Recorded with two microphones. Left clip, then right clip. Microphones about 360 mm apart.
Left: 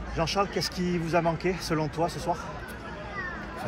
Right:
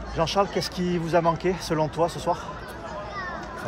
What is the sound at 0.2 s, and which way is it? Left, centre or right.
Speech, right.